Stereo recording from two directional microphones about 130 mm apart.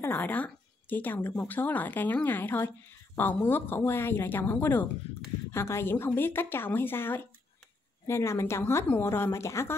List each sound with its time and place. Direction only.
0.0 s a woman's voice: 15° left (ahead or behind)